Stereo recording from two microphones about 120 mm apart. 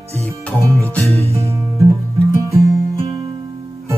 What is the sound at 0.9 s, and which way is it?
Music, 10° left (ahead or behind).